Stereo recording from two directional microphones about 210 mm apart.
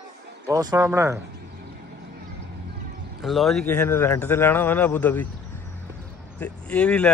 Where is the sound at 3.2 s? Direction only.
Centre (ahead or behind).